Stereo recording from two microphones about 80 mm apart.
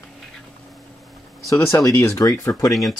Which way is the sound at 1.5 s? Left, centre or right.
Left.